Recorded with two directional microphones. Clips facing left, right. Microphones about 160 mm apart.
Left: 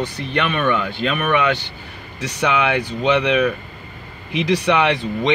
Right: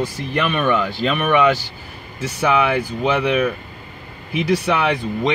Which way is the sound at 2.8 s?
85° left.